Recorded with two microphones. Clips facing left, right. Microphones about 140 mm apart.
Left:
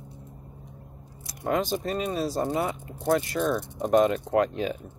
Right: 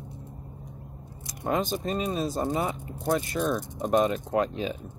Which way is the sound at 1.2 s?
20° right (ahead or behind).